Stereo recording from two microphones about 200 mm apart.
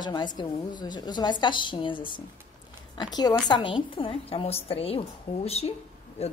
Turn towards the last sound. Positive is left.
turn(degrees=30)  # may be behind; listen again after turning